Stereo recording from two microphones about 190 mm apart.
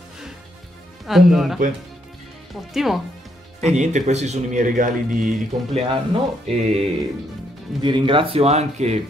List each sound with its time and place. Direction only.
1.0 s speech: centre (ahead or behind)
2.7 s speech: centre (ahead or behind)
3.6 s speech: 40° right (ahead or behind)
5.8 s speech: 30° right (ahead or behind)
7.8 s speech: 25° right (ahead or behind)